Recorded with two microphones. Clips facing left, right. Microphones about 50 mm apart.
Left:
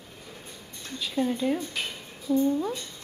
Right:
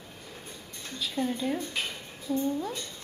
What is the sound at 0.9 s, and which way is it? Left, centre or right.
Speech, centre.